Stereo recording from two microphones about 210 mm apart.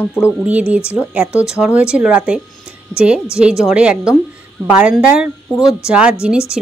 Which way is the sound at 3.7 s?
5° right (ahead or behind).